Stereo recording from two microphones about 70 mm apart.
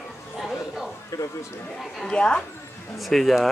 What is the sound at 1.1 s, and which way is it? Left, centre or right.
Speech, left.